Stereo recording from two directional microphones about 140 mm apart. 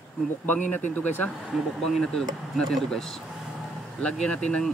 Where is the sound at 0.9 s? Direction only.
10° left (ahead or behind).